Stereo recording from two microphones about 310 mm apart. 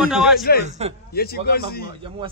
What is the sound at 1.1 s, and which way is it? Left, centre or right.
Speech, left.